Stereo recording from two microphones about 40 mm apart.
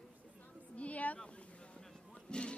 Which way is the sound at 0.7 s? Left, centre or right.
Left.